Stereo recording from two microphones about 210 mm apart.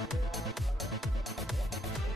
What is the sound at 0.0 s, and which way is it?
Music, centre (ahead or behind).